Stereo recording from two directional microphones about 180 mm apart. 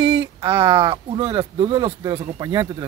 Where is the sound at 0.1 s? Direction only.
30° right (ahead or behind).